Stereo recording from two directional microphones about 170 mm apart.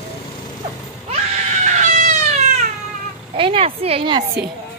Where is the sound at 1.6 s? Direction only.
45° right (ahead or behind).